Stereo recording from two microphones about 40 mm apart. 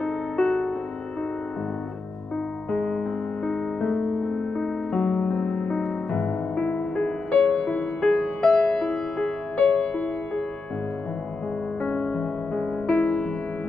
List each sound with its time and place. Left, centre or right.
0.4 s music: centre
2.7 s music: left
8.1 s music: centre
11.8 s music: left